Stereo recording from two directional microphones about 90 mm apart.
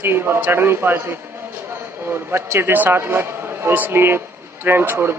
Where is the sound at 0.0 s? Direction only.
25° right (ahead or behind).